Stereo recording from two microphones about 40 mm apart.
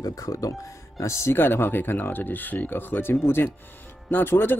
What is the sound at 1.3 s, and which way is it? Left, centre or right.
Speech, left.